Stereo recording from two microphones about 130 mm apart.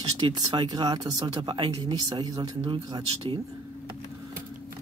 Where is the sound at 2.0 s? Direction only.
30° right (ahead or behind).